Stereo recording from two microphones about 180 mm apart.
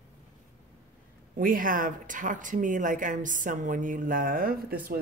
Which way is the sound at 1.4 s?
50° right (ahead or behind).